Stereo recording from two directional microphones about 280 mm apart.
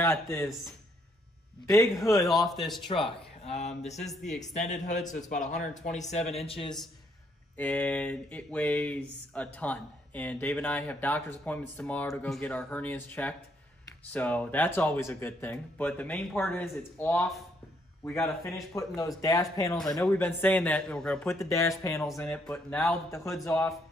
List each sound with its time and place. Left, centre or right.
0.0 s speech: centre
1.7 s speech: centre
2.2 s speech: centre
2.9 s speech: centre
4.0 s speech: centre
4.4 s speech: left
7.5 s speech: centre